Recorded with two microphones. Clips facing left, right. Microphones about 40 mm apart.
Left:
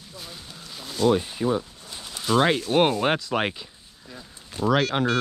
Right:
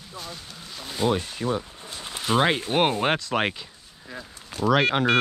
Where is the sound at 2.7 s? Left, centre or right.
Centre.